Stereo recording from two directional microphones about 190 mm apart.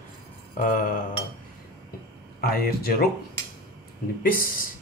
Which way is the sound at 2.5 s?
55° left (ahead or behind).